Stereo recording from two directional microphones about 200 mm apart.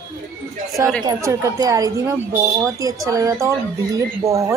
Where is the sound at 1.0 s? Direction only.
15° right (ahead or behind).